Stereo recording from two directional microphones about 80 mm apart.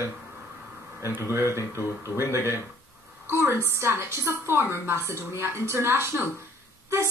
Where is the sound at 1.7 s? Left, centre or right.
Right.